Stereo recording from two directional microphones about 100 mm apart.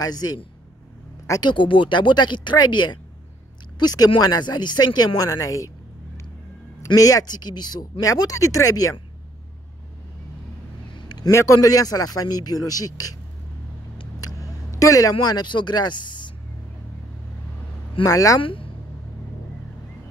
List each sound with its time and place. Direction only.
0.0 s a man's voice: 40° left (ahead or behind)
1.4 s a man's voice: 55° left (ahead or behind); by 5.7 s 35° left (ahead or behind)
7.0 s speech: 35° left (ahead or behind)
8.0 s a man's voice: 35° left (ahead or behind)
11.1 s a sound: 45° left (ahead or behind)
11.3 s a man's voice: 35° left (ahead or behind)
14.8 s a man's voice: 35° left (ahead or behind)
15.1 s speech: 50° left (ahead or behind)
18.0 s a man's voice: 35° left (ahead or behind)
18.4 s speech: 60° left (ahead or behind)